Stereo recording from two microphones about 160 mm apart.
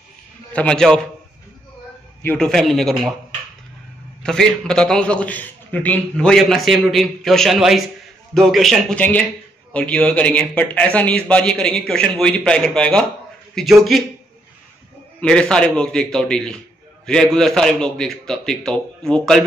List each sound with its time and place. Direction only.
0.5 s a man's voice: 5° left (ahead or behind)
2.2 s a man's voice: 5° left (ahead or behind)
4.2 s a man's voice: 5° left (ahead or behind)
15.1 s a man's voice: 5° left (ahead or behind)